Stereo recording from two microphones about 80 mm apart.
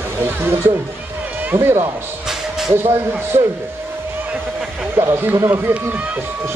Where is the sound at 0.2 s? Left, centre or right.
Right.